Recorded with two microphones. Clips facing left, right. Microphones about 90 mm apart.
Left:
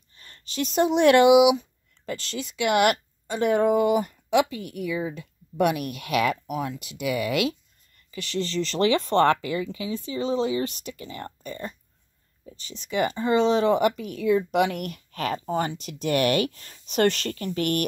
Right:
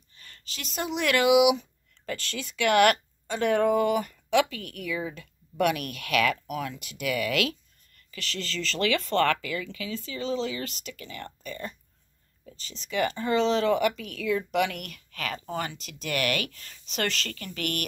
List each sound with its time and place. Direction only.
0.2 s speech: 30° left (ahead or behind)
12.9 s speech: 20° left (ahead or behind)